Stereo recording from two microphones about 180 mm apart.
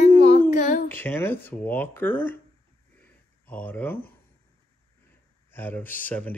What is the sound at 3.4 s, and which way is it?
Speech, 10° left (ahead or behind).